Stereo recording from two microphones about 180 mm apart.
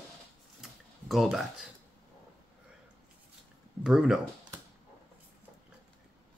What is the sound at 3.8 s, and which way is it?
Speech, 5° right (ahead or behind).